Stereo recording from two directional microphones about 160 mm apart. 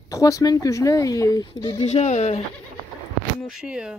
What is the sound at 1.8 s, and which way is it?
Speech, 40° left (ahead or behind).